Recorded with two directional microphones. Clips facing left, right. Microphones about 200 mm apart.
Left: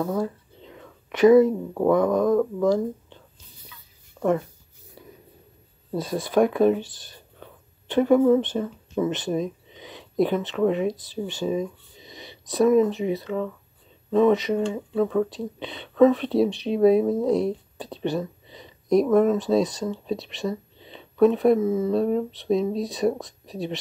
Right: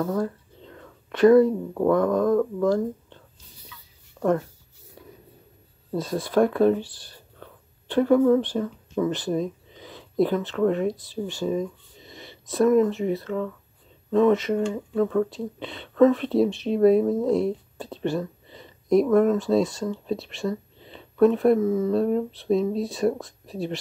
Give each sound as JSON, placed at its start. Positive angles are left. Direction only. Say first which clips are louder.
{"t": 0.0, "sound": "speech", "louder": "even", "side_deg": 10}
{"t": 4.2, "sound": "a sound", "louder": "even", "side_deg": 5}
{"t": 6.3, "sound": "speech", "louder": "even", "side_deg": 15}
{"t": 9.1, "sound": "a sound", "louder": "even", "side_deg": 20}
{"t": 10.6, "sound": "speech", "louder": "even", "side_deg": 15}
{"t": 11.0, "sound": "speech", "louder": "even", "side_deg": 0}
{"t": 12.0, "sound": "a sound", "louder": "even", "side_deg": 0}
{"t": 13.2, "sound": "speech", "louder": "even", "side_deg": 5}
{"t": 17.0, "sound": "speech", "louder": "even", "side_deg": 15}
{"t": 17.4, "sound": "speech", "louder": "even", "side_deg": 0}
{"t": 19.6, "sound": "speech", "louder": "even", "side_deg": 20}
{"t": 19.9, "sound": "speech", "louder": "even", "side_deg": 0}
{"t": 20.8, "sound": "a sound", "louder": "even", "side_deg": 0}
{"t": 21.7, "sound": "speech", "louder": "even", "side_deg": 5}